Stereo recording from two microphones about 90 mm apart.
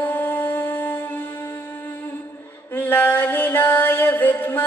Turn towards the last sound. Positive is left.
turn(degrees=25)  # may be behind; listen again after turning